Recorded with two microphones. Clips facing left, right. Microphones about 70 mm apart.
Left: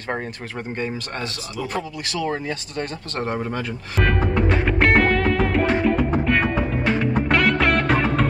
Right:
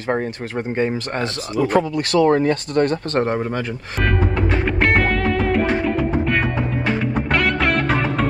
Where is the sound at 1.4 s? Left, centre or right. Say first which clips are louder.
Right 13 dB; right.